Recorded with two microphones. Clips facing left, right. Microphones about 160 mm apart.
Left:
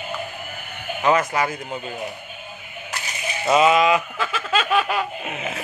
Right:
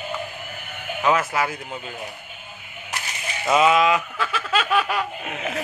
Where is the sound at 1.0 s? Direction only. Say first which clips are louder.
Left 2 dB; 5° right (ahead or behind).